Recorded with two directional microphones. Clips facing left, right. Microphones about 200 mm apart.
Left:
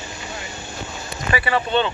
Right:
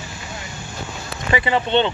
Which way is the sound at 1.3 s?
20° right (ahead or behind).